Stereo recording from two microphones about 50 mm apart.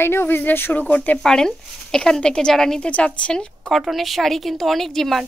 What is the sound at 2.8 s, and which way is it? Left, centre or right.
Speech, left.